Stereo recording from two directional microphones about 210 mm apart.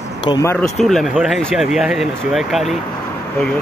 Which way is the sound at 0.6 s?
Centre (ahead or behind).